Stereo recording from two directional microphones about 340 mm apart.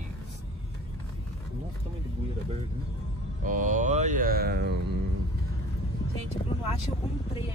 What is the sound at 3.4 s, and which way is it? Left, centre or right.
Speech, right.